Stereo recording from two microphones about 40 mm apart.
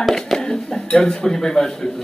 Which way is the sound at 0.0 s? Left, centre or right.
Centre.